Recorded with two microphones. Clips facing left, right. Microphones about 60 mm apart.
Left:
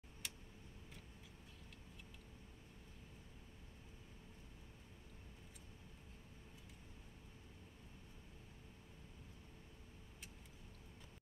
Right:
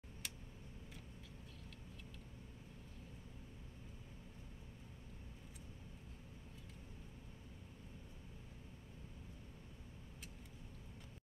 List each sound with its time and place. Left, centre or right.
0.2 s tick: centre